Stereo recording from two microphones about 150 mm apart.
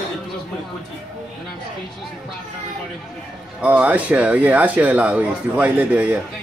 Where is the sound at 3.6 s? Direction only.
10° right (ahead or behind).